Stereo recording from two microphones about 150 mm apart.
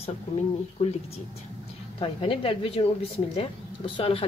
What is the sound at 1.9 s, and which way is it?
A woman's voice, 35° left (ahead or behind).